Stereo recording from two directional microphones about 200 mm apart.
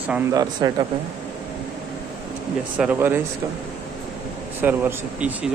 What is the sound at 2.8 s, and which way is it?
Speech, 10° right (ahead or behind).